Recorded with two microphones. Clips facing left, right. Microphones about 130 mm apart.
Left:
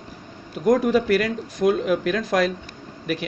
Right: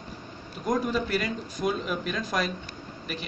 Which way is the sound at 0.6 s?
60° left (ahead or behind).